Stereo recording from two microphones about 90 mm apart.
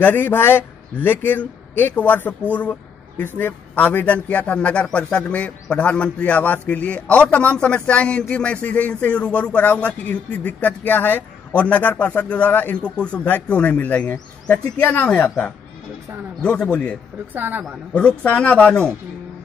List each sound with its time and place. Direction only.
0.0 s a man's voice: 25° left (ahead or behind)
16.4 s a man's voice: 10° left (ahead or behind)
17.3 s a woman's voice: 20° right (ahead or behind)
17.9 s a man's voice: 15° left (ahead or behind)